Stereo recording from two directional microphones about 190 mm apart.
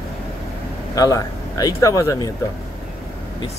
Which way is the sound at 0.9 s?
20° left (ahead or behind).